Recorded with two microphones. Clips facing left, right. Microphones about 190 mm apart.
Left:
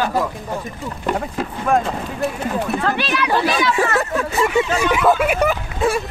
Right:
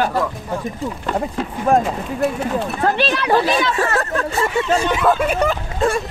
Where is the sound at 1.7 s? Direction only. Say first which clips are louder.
Right 2 dB; 35° right (ahead or behind).